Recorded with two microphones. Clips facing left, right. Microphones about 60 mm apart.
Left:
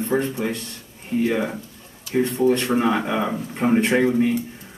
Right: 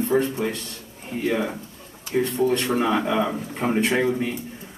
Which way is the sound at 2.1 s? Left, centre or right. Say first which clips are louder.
Left 2 dB; centre.